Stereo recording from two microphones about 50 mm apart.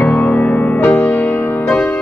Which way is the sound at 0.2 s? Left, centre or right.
Left.